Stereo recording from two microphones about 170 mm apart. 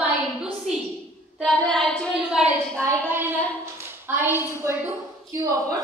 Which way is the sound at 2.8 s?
20° right (ahead or behind).